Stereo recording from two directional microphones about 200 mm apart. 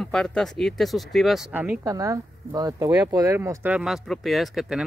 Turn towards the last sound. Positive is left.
turn(degrees=0)  # may be behind; listen again after turning